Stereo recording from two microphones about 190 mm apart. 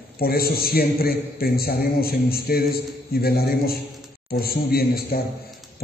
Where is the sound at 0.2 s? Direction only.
55° left (ahead or behind).